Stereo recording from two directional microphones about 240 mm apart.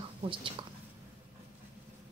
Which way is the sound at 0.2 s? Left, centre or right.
Right.